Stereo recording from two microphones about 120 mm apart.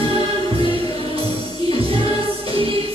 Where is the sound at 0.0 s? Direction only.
50° right (ahead or behind).